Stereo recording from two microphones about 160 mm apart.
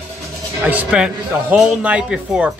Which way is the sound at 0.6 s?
10° right (ahead or behind).